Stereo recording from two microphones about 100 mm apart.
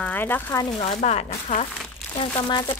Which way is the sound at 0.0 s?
20° left (ahead or behind).